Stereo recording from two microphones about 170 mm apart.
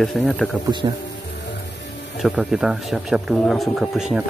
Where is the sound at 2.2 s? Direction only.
Centre (ahead or behind).